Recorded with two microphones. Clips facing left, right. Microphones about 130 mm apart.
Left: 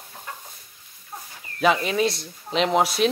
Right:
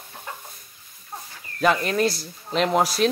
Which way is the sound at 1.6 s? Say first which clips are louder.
Even; centre (ahead or behind).